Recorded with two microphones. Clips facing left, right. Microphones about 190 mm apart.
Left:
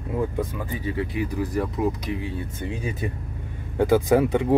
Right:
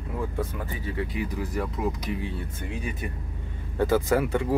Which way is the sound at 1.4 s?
30° left (ahead or behind).